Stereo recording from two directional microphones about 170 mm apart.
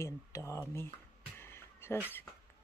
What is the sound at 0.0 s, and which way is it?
Speech, 15° left (ahead or behind).